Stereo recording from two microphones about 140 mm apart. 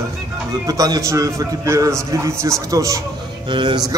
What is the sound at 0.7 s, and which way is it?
A man's voice, 25° right (ahead or behind).